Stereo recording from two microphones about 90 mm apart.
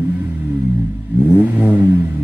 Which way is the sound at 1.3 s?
15° right (ahead or behind).